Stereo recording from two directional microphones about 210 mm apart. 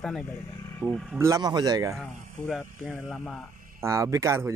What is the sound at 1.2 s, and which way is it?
Speech, 15° right (ahead or behind).